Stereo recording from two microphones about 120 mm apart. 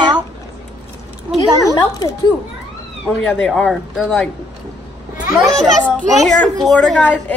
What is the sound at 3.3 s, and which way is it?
Speech, 5° left (ahead or behind).